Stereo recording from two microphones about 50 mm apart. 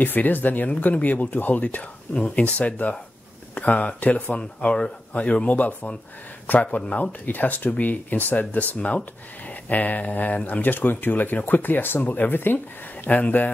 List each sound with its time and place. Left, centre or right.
0.0 s speech: left
4.4 s a man's voice: centre; by 13.5 s left